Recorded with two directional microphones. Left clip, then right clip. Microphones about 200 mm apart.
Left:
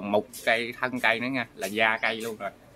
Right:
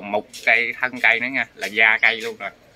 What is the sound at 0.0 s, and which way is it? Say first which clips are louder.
Speech: right 4 dB; 45° left (ahead or behind).